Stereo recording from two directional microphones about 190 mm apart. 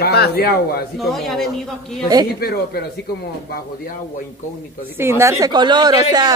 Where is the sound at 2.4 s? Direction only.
55° left (ahead or behind).